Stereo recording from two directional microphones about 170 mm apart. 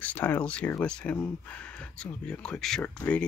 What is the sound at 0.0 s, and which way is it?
Speech, 10° left (ahead or behind).